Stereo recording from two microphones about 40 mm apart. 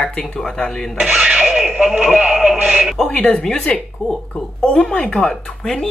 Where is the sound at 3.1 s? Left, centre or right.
Left.